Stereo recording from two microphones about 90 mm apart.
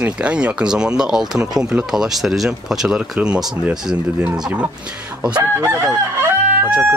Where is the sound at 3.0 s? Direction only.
15° right (ahead or behind).